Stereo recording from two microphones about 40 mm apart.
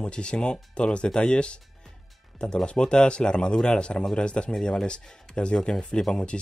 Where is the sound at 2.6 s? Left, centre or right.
Left.